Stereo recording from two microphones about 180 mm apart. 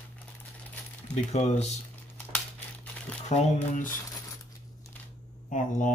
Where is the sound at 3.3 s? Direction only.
40° left (ahead or behind).